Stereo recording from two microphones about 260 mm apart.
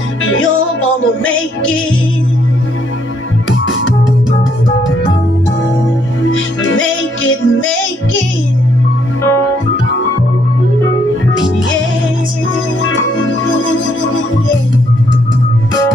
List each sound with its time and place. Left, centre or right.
6.3 s music: left
11.3 s music: left
13.6 s music: left